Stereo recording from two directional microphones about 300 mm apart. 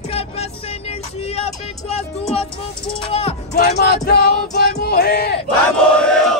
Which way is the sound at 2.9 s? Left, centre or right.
Centre.